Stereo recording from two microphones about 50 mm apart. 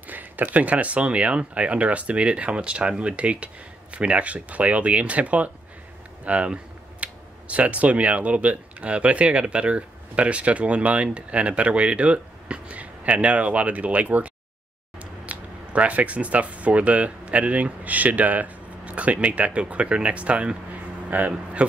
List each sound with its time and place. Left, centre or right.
0.0 s a man's voice: right